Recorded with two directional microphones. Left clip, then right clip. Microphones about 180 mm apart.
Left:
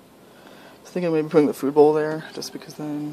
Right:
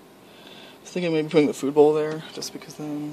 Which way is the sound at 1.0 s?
5° left (ahead or behind).